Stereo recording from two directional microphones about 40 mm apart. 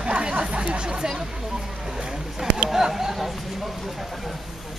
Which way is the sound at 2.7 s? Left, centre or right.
Centre.